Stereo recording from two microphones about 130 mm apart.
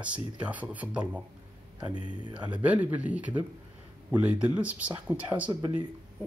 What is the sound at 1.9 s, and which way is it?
Speech, 35° right (ahead or behind).